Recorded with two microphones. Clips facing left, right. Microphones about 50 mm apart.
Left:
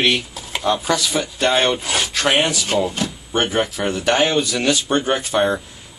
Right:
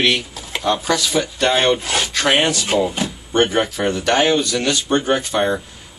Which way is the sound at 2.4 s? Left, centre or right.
Centre.